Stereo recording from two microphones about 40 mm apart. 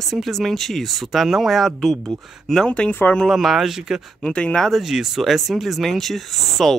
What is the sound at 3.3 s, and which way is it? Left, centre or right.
Speech, centre.